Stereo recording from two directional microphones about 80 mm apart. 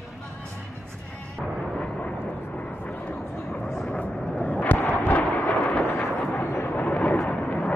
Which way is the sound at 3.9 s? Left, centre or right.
Centre.